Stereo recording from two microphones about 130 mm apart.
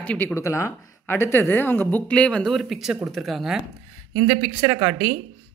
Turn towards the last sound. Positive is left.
turn(degrees=-15)  # may be behind; listen again after turning